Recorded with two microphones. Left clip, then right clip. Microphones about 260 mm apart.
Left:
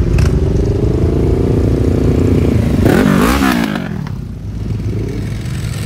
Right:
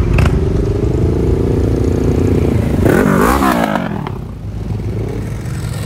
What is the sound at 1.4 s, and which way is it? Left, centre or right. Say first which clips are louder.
Vehicle: left 1 dB; centre.